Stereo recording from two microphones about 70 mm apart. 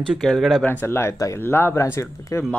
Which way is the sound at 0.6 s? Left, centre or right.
Left.